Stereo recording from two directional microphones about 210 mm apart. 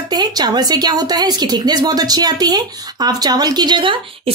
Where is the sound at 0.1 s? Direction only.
20° right (ahead or behind).